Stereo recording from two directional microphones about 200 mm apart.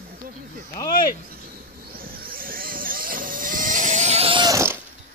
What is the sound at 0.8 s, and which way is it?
Speech, 45° left (ahead or behind).